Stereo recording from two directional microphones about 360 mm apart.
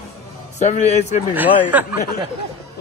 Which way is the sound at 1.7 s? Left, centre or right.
Centre.